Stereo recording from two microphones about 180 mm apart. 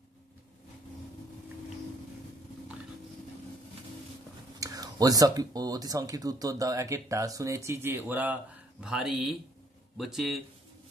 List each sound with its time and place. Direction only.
4.6 s speech: 20° right (ahead or behind); by 10.4 s centre (ahead or behind)